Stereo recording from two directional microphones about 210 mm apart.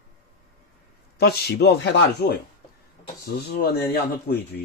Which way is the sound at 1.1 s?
50° left (ahead or behind).